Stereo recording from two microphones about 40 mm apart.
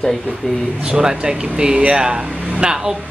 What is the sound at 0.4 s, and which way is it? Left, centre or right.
Speech, centre.